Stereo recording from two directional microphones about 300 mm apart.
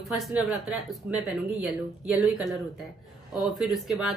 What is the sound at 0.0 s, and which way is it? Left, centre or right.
A woman's voice, centre.